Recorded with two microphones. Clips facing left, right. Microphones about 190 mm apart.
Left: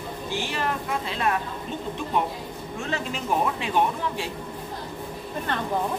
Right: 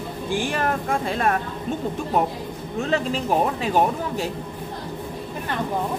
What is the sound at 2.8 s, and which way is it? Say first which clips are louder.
Speech: right 7 dB; 35° right (ahead or behind).